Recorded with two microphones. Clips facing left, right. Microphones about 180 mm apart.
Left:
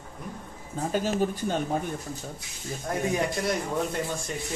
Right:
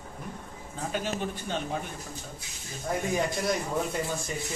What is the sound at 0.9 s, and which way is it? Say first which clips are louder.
Speech: left 6 dB; 40° left (ahead or behind).